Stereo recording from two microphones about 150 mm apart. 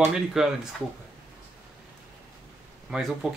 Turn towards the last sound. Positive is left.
turn(degrees=-5)  # may be behind; listen again after turning